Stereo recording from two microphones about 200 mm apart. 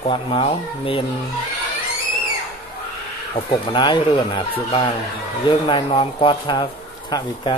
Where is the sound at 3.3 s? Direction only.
25° left (ahead or behind).